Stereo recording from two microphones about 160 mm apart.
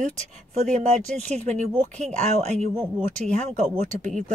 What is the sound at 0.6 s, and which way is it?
A woman's voice, 45° right (ahead or behind).